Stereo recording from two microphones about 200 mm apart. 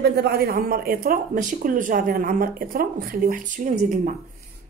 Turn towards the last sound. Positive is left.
turn(degrees=-40)  # may be behind; listen again after turning